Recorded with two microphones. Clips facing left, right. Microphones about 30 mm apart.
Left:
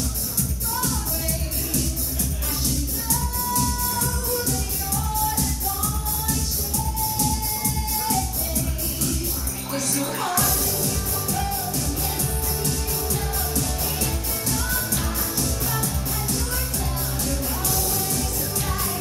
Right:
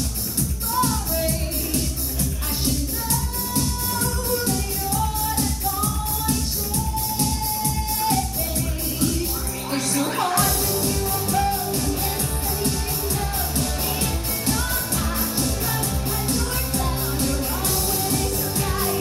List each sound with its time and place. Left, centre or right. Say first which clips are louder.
0.7 s music: right 6 dB; right
3.5 s music: right 1 dB; right
8.0 s music: right 3 dB; right
9.9 s music: right 5 dB; right
10.3 s music: right 3 dB; right
17.2 s music: right 2 dB; right